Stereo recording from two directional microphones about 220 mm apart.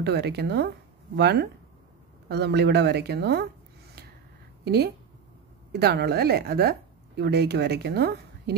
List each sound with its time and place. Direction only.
0.0 s speech: 50° right (ahead or behind)
4.6 s speech: 45° right (ahead or behind)